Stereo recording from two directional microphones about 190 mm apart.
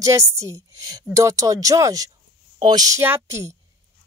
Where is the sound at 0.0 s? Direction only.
15° right (ahead or behind).